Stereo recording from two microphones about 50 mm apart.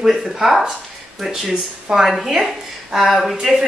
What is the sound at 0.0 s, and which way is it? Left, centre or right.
A woman's voice, centre.